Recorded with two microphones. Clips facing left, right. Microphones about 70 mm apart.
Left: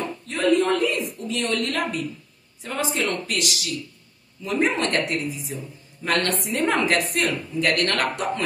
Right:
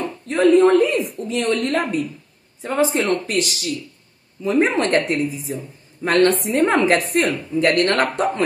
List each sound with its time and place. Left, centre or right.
0.3 s a woman's voice: right